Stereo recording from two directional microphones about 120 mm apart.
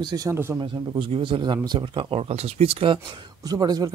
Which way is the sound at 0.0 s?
30° right (ahead or behind).